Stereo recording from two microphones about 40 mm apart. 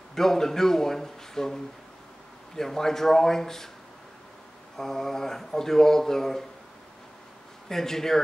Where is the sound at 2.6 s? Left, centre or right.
Centre.